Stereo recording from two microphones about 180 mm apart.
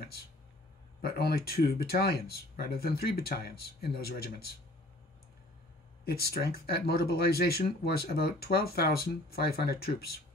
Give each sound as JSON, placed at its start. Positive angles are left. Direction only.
{"t": 1.0, "sound": "speech", "side_deg": 60}
{"t": 6.0, "sound": "speech", "side_deg": 60}